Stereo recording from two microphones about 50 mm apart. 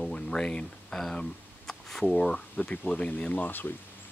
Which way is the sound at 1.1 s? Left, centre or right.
Centre.